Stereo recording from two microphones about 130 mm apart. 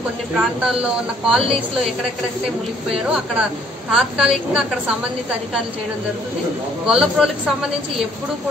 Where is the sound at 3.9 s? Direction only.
5° right (ahead or behind).